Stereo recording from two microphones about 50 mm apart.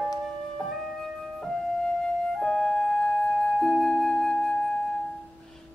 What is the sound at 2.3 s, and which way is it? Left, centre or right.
Music, centre.